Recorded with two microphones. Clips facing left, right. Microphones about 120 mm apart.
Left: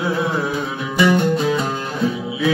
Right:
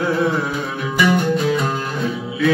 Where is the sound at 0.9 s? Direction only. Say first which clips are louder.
Left 1 dB; 25° left (ahead or behind).